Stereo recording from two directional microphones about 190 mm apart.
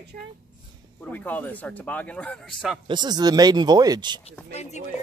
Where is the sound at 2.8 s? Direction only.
25° right (ahead or behind).